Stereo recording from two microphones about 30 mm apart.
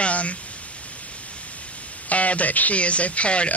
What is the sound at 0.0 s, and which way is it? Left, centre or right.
Pink noise, left.